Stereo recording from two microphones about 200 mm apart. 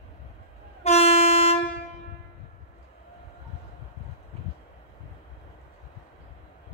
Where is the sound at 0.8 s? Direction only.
30° left (ahead or behind).